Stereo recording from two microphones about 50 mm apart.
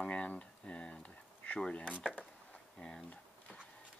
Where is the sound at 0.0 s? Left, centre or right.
Left.